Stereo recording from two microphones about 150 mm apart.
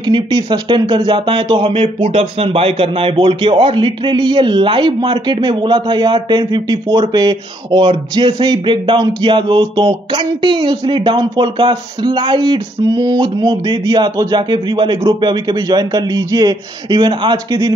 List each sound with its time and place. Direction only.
0.0 s speech: 30° right (ahead or behind)